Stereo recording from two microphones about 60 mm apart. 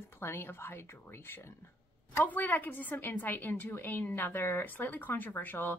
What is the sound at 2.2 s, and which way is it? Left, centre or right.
A woman's voice, left.